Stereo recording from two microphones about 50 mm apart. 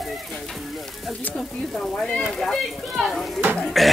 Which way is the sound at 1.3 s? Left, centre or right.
Centre.